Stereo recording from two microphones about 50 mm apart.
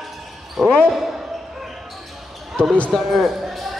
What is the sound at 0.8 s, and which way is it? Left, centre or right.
Speech, centre.